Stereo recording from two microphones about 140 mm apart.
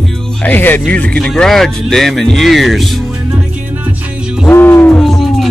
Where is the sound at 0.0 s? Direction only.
10° left (ahead or behind); by 4.5 s 10° right (ahead or behind).